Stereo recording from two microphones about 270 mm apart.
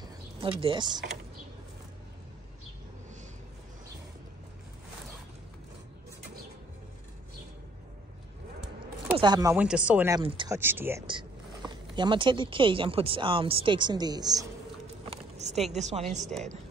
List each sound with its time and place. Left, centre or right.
0.0 s power windows: centre
9.2 s speech: centre
15.0 s vehicle: right
15.7 s a woman's voice: right